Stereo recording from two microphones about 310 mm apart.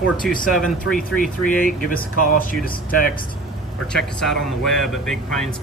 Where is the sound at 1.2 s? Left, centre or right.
Left.